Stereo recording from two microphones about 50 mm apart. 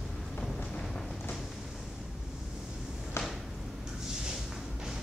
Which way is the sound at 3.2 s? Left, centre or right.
Left.